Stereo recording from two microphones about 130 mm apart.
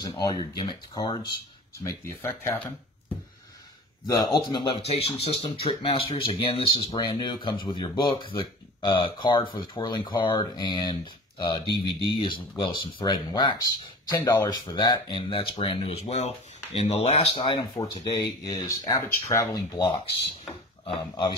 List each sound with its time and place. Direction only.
0.0 s speech: 35° left (ahead or behind)
1.9 s speech: 20° left (ahead or behind)
4.1 s speech: 30° left (ahead or behind)
4.8 s speech: 50° left (ahead or behind)
17.6 s speech: 30° left (ahead or behind)